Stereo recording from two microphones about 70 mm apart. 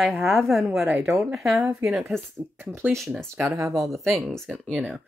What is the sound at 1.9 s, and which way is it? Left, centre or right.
Speech, centre.